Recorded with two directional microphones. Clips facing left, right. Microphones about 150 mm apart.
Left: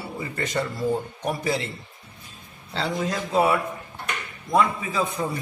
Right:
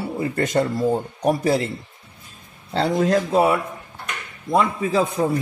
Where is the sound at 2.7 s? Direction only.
45° right (ahead or behind).